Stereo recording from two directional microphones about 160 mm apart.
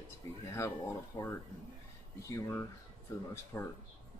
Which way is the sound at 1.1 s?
25° left (ahead or behind).